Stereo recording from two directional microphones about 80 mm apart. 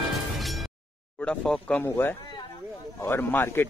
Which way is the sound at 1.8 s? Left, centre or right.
Left.